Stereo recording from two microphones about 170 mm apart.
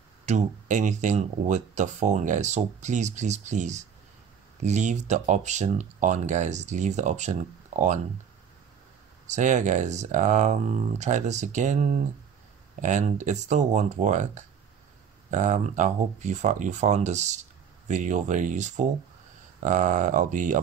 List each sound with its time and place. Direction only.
0.2 s speech: 45° right (ahead or behind)
7.7 s a sound: 45° right (ahead or behind)
9.3 s speech: 45° right (ahead or behind)